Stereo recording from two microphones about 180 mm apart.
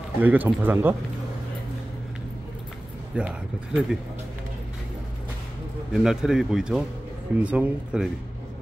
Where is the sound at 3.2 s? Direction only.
10° right (ahead or behind).